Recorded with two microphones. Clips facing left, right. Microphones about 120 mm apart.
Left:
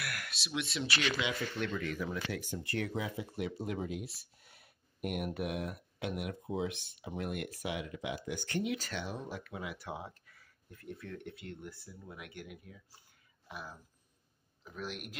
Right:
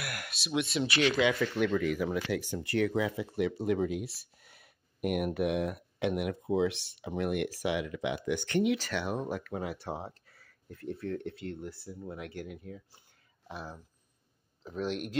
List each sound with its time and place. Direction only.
0.0 s a sound: 15° right (ahead or behind)
0.5 s speech: 15° right (ahead or behind)
1.0 s speech: 45° right (ahead or behind)
1.4 s speech: 90° right; by 12.8 s 30° right (ahead or behind)
14.6 s speech: 30° right (ahead or behind)